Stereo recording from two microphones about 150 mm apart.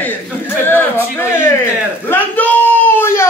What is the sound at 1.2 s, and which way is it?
Speech, 15° left (ahead or behind).